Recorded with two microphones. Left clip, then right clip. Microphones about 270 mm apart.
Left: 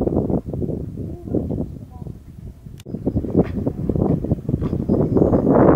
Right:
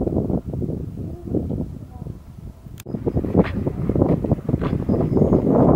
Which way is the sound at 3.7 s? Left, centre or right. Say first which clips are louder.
Left 1 dB; right.